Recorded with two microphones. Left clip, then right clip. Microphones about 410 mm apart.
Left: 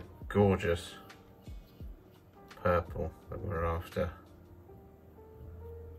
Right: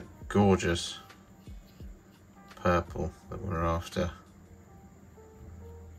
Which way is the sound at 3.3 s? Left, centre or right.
Centre.